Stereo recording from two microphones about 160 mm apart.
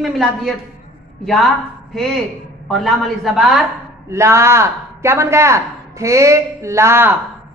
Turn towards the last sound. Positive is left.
turn(degrees=-15)  # may be behind; listen again after turning